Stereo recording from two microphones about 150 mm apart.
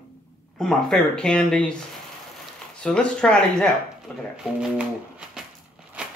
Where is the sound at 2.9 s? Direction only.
5° left (ahead or behind).